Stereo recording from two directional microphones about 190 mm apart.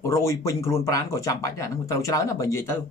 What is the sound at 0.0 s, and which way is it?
Speech, 15° left (ahead or behind).